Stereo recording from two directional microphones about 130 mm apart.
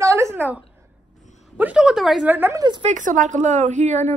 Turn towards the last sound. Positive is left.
turn(degrees=-65)  # may be behind; listen again after turning